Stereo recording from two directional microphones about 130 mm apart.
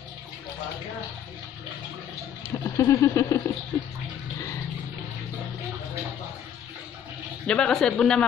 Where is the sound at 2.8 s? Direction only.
25° left (ahead or behind).